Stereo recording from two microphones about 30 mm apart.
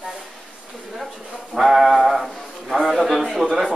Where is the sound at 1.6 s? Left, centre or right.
Centre.